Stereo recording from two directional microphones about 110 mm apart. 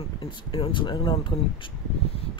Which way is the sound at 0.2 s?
45° left (ahead or behind).